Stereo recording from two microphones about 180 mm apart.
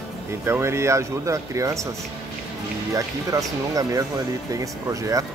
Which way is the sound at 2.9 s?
20° right (ahead or behind).